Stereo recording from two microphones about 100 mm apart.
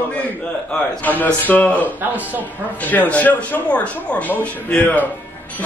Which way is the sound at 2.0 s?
15° right (ahead or behind).